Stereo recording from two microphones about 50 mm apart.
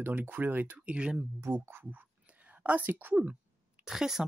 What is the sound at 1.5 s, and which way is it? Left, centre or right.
Speech, right.